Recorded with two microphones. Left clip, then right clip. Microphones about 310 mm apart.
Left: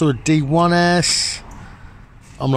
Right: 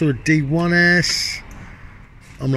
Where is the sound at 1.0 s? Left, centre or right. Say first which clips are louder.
Left 2 dB; left.